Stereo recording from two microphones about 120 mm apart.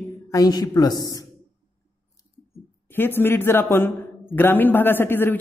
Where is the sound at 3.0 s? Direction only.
20° left (ahead or behind).